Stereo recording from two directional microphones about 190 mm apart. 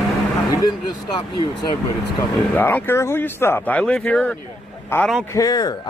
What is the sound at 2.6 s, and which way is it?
A man's voice, 10° left (ahead or behind).